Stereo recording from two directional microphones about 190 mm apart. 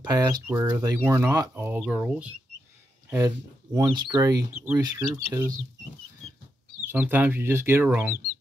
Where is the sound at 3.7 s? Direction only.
20° right (ahead or behind).